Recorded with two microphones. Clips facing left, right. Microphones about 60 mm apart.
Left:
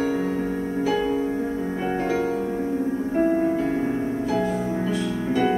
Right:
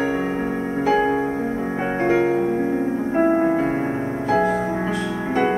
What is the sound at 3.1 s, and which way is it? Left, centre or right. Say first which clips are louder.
Music: right 3 dB; right.